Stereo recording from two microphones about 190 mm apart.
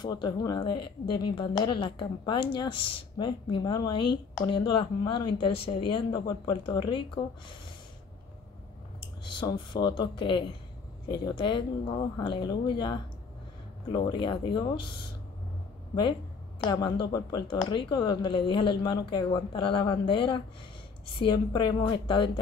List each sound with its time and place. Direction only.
0.0 s speech: 20° left (ahead or behind)
9.2 s speech: 25° left (ahead or behind)